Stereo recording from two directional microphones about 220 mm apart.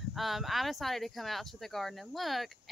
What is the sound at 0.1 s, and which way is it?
Speech, centre (ahead or behind).